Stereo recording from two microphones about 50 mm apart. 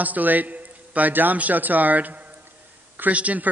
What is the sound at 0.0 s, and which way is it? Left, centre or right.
A man's voice, right.